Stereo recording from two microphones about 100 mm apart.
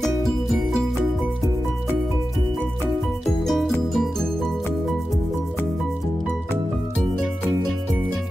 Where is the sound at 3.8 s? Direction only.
Centre (ahead or behind).